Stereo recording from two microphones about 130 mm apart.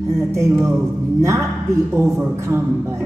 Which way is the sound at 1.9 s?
20° right (ahead or behind).